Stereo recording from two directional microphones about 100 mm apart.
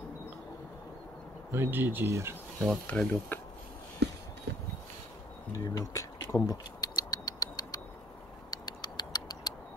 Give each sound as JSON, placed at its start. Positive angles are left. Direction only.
{"t": 1.5, "sound": "speech", "side_deg": -20}
{"t": 2.9, "sound": "speech", "side_deg": 15}
{"t": 5.5, "sound": "speech", "side_deg": 30}
{"t": 6.4, "sound": "a sound", "side_deg": 40}
{"t": 8.5, "sound": "tick-tock", "side_deg": 45}